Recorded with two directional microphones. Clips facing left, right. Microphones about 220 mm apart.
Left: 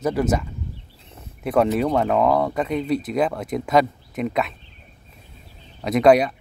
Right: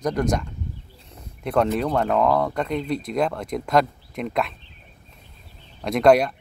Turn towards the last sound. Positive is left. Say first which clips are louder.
# left 1 dB
turn(degrees=0)  # may be behind; listen again after turning